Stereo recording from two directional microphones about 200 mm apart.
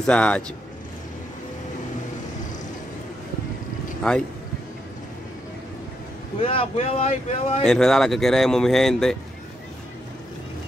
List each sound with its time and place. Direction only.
0.0 s speech: 5° left (ahead or behind)
4.1 s speech: 5° left (ahead or behind)
6.4 s speech: 30° left (ahead or behind)
7.6 s speech: centre (ahead or behind)